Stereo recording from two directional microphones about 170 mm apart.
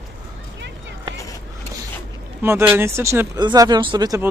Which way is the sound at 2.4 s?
10° right (ahead or behind).